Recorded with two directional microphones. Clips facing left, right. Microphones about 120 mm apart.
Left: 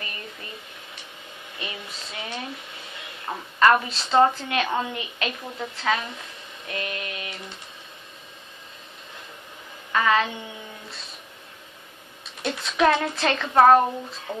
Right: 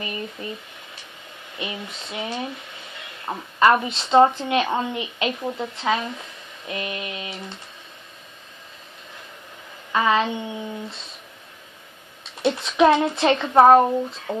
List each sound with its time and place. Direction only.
0.0 s speech: 20° right (ahead or behind)
1.6 s a sound: 25° right (ahead or behind)
3.5 s a woman's voice: 20° right (ahead or behind)
9.9 s a woman's voice: 20° right (ahead or behind)
12.4 s a woman's voice: 20° right (ahead or behind)